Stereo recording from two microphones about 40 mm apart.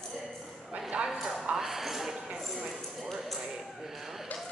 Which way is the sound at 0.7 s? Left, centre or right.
Right.